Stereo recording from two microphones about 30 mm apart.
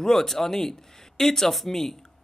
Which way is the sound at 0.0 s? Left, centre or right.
Centre.